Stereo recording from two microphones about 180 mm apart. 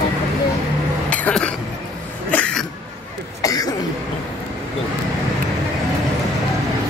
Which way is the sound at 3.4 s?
20° left (ahead or behind).